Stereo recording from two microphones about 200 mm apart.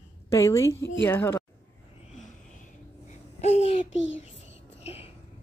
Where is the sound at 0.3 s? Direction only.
15° left (ahead or behind).